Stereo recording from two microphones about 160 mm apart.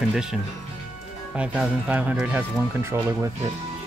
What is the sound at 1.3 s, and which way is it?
Speech, 10° right (ahead or behind).